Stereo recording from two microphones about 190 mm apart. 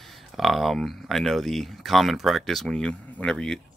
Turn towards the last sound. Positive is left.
turn(degrees=5)  # may be behind; listen again after turning